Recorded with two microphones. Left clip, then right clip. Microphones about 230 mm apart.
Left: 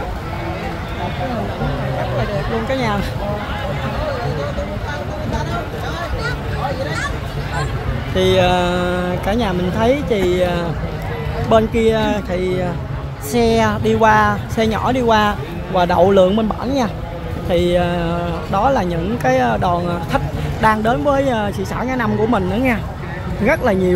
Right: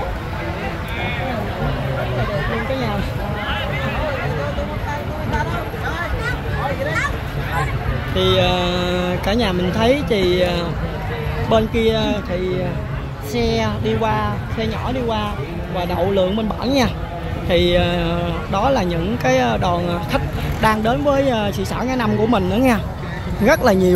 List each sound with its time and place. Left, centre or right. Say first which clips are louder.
8.1 s speech: left 3 dB; centre
16.6 s speech: right 1 dB; centre